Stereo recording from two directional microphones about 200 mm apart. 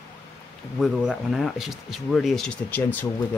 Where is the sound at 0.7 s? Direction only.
Centre (ahead or behind).